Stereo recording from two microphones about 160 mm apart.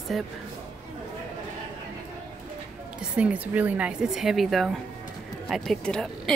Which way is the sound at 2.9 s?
5° right (ahead or behind).